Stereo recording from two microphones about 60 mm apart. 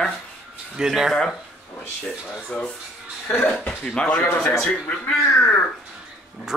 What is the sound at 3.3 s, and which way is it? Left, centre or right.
Speech, left.